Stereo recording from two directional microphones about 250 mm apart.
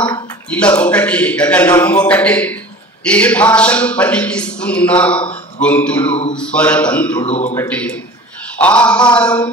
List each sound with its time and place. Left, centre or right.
0.5 s a man's voice: centre
5.6 s a sound: centre
6.3 s a man's voice: centre
7.2 s speech: left
7.5 s a sound: centre
8.5 s a man's voice: centre